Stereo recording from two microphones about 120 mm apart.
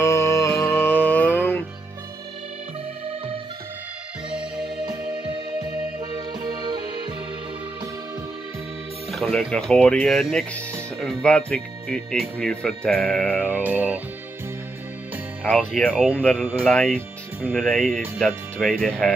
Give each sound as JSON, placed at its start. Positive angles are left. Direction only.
{"t": 0.0, "sound": "music", "side_deg": 25}
{"t": 5.9, "sound": "music", "side_deg": -35}
{"t": 9.1, "sound": "speech", "side_deg": 0}
{"t": 13.5, "sound": "music", "side_deg": -15}
{"t": 15.4, "sound": "speech", "side_deg": 10}
{"t": 15.9, "sound": "music", "side_deg": -10}
{"t": 16.2, "sound": "speech", "side_deg": 5}